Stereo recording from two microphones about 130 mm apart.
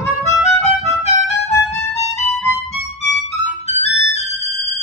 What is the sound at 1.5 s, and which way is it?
Music, 20° left (ahead or behind).